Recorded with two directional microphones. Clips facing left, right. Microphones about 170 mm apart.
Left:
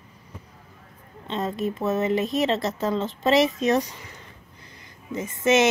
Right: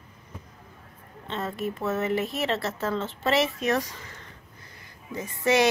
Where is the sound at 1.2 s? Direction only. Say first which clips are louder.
Left 4 dB; 20° left (ahead or behind).